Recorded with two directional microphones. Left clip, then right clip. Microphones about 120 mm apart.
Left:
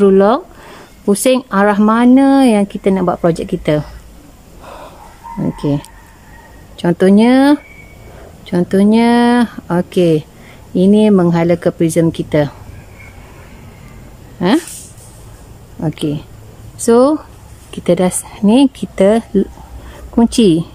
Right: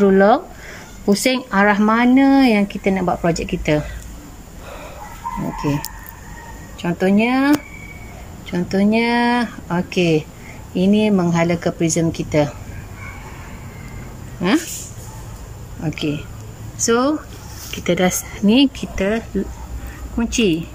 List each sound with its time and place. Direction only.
0.0 s speech: 25° left (ahead or behind)
6.8 s speech: 50° left (ahead or behind)
8.5 s speech: 35° left (ahead or behind)
14.4 s speech: 35° left (ahead or behind)
15.8 s speech: 40° left (ahead or behind)
18.9 s speech: 45° left (ahead or behind)